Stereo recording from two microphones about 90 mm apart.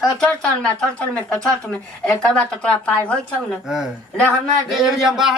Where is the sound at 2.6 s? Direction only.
15° left (ahead or behind).